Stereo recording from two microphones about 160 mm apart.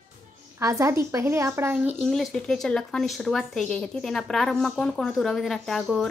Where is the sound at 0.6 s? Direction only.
20° right (ahead or behind).